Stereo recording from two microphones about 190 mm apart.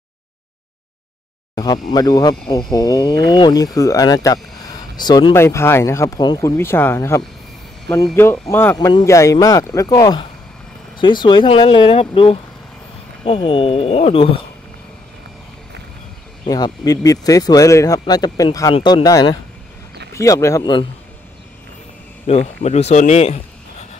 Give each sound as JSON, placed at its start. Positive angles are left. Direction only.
{"t": 1.5, "sound": "speech", "side_deg": 20}
{"t": 16.4, "sound": "speech", "side_deg": 20}
{"t": 22.2, "sound": "speech", "side_deg": 35}